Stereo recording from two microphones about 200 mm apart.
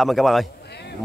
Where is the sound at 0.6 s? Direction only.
55° left (ahead or behind).